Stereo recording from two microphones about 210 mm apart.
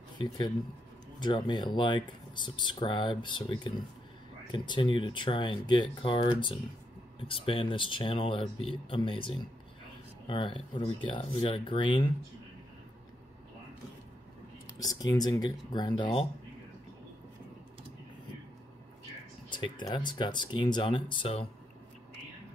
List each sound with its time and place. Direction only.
1.2 s speech: 20° left (ahead or behind)
14.8 s speech: 15° left (ahead or behind)
19.5 s speech: 20° left (ahead or behind)